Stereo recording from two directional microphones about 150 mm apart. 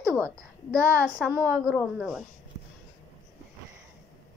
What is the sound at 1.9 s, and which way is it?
Speech, 5° right (ahead or behind).